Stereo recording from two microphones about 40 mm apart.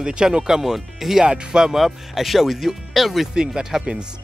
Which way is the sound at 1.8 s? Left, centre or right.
Centre.